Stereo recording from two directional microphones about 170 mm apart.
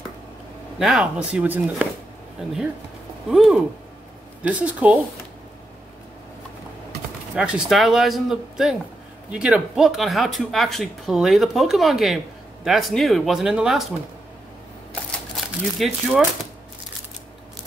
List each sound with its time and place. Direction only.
0.7 s speech: centre (ahead or behind)
7.3 s speech: 5° right (ahead or behind)
15.0 s crumpling: centre (ahead or behind)